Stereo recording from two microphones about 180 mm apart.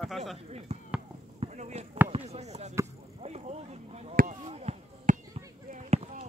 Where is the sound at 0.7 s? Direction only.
35° right (ahead or behind).